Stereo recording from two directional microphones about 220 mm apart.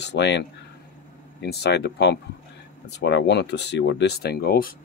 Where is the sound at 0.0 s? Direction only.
50° left (ahead or behind).